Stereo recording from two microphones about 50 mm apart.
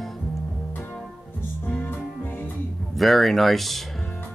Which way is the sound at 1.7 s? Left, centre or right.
Left.